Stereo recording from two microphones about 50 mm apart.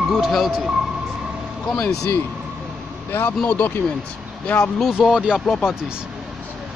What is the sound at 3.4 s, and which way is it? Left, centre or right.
Speech, left.